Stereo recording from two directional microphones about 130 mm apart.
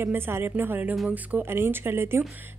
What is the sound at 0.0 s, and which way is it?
A woman's voice, 15° right (ahead or behind).